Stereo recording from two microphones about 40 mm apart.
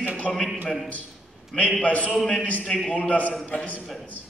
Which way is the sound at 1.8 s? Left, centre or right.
Left.